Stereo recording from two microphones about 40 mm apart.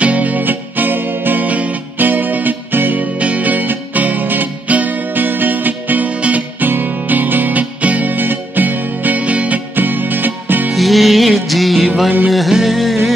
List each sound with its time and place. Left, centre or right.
0.0 s music: right
1.4 s music: right
3.0 s music: right
8.1 s music: right
9.8 s music: right
10.7 s music: centre
12.3 s a sound: centre